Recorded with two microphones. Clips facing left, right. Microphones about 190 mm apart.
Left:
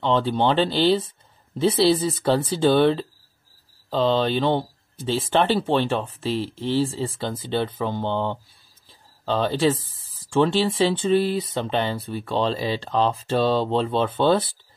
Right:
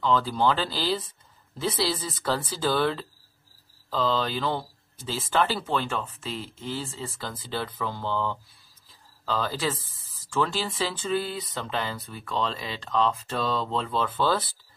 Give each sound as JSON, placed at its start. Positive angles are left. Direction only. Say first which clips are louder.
{"t": 0.0, "sound": "speech", "louder": "left 3 dB", "side_deg": 25}